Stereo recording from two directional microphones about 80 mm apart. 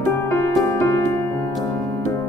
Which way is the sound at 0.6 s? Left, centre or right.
Left.